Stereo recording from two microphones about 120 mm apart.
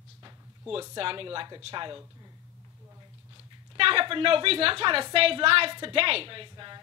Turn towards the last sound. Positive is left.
turn(degrees=-45)  # may be behind; listen again after turning